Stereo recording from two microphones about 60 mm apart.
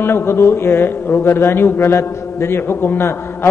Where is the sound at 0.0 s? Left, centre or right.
Left.